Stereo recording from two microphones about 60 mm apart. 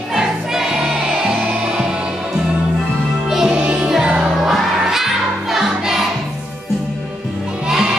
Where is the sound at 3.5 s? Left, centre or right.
Centre.